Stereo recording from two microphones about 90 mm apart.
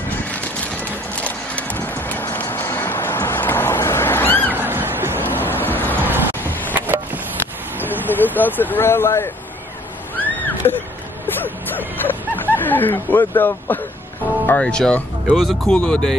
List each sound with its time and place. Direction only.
1.2 s music: 15° left (ahead or behind)
2.5 s cat: 25° left (ahead or behind)
4.6 s cat: 25° right (ahead or behind)
5.2 s waves: 20° left (ahead or behind)
6.7 s a sound: 20° right (ahead or behind)
8.4 s speech: 20° left (ahead or behind)
10.1 s a sound: 20° left (ahead or behind)
14.4 s speech: 15° left (ahead or behind)
15.3 s speech: centre (ahead or behind)
15.7 s speech: 10° left (ahead or behind)